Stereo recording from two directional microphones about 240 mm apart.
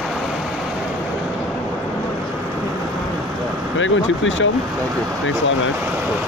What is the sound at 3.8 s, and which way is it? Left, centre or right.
Speech, left.